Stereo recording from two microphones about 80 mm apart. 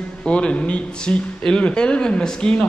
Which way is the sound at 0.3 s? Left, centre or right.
Centre.